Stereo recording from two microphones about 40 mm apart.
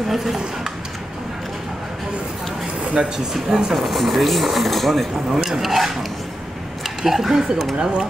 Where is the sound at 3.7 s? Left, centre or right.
Centre.